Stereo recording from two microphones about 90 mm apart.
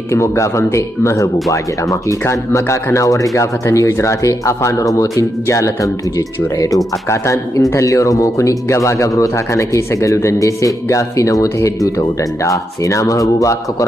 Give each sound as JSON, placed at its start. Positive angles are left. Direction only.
{"t": 0.1, "sound": "speech", "side_deg": 35}